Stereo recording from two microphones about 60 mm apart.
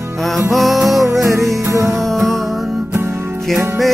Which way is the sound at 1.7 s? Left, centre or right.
Right.